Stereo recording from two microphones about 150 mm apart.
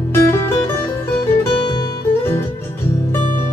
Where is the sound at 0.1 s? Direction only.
20° left (ahead or behind).